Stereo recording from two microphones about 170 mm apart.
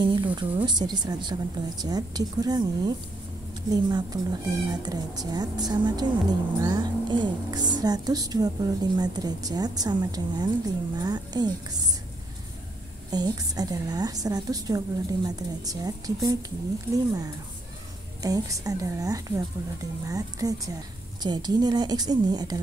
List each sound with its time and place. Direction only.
0.0 s speech: 25° right (ahead or behind)
13.1 s speech: 25° right (ahead or behind)